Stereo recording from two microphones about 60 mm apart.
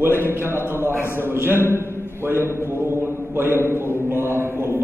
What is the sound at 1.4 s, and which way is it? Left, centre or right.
Mantra, right.